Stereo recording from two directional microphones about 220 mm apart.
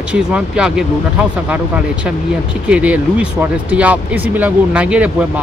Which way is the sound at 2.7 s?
5° right (ahead or behind).